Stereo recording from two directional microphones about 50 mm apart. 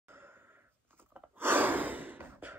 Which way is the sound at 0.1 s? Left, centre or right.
Right.